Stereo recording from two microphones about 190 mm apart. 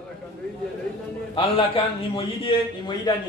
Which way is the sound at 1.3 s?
30° left (ahead or behind).